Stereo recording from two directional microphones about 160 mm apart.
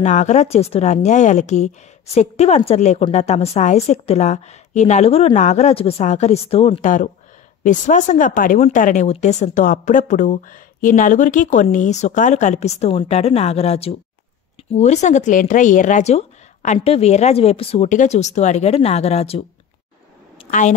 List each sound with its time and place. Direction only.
0.0 s speech: 45° left (ahead or behind)
6.8 s speech: 50° left (ahead or behind)